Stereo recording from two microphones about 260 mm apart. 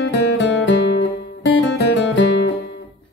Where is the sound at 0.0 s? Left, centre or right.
Left.